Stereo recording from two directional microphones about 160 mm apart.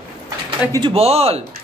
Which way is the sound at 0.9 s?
40° right (ahead or behind).